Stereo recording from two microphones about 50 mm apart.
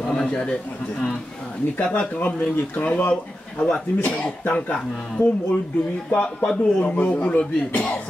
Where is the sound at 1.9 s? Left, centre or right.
Left.